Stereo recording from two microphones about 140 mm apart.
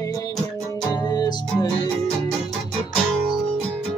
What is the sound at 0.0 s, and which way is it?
Music, 25° left (ahead or behind).